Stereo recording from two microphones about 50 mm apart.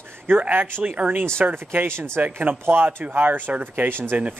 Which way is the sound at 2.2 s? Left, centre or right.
Right.